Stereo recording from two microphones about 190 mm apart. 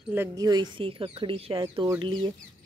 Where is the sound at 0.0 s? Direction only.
10° right (ahead or behind).